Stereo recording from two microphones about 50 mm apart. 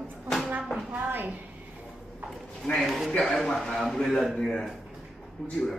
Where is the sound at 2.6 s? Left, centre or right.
Centre.